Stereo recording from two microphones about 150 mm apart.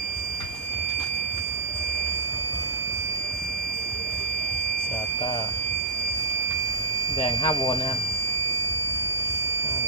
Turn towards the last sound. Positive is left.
turn(degrees=35)  # may be behind; listen again after turning